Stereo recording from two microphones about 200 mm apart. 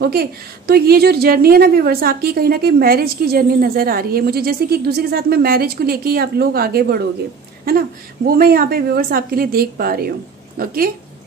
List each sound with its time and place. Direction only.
0.0 s a woman's voice: 50° right (ahead or behind)
8.3 s a woman's voice: 50° right (ahead or behind)